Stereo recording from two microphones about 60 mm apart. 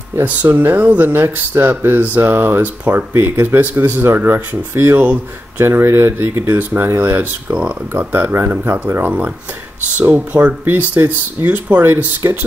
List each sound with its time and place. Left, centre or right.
0.1 s speech: right
2.6 s speech: right
3.1 s speech: right
3.4 s speech: right